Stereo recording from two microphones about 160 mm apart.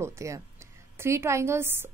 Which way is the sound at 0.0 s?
20° right (ahead or behind).